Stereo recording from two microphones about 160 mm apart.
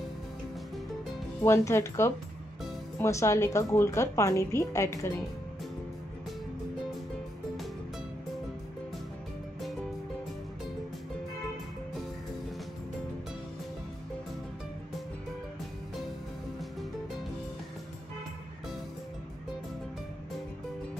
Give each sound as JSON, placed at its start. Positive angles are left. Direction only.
{"t": 1.4, "sound": "a woman's voice", "side_deg": 15}